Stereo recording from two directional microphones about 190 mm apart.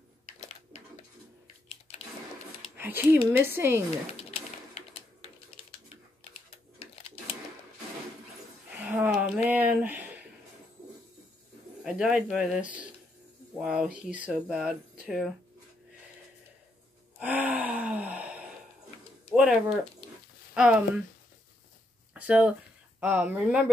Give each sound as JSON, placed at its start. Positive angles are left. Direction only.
{"t": 2.8, "sound": "speech", "side_deg": -10}
{"t": 4.3, "sound": "typewriter", "side_deg": 30}
{"t": 8.8, "sound": "a sound", "side_deg": -5}
{"t": 11.8, "sound": "speech", "side_deg": -5}
{"t": 14.0, "sound": "speech", "side_deg": -5}
{"t": 17.2, "sound": "gasp", "side_deg": -10}
{"t": 19.3, "sound": "speech", "side_deg": 0}
{"t": 22.1, "sound": "speech", "side_deg": -5}